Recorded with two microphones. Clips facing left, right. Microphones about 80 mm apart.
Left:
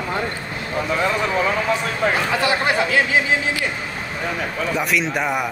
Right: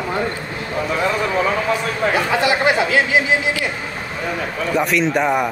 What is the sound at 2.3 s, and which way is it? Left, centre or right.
Speech, right.